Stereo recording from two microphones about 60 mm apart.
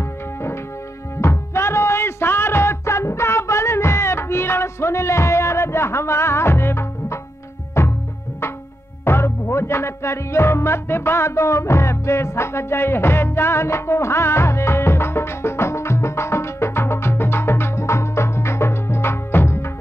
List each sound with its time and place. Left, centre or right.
1.2 s music: left
9.0 s music: left